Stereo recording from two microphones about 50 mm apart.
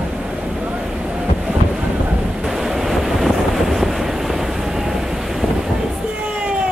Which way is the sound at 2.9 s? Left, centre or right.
Centre.